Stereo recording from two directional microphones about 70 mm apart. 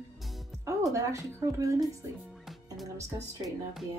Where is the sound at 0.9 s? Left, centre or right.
Right.